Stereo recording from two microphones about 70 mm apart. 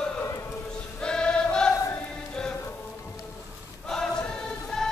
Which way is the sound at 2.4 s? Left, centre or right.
Centre.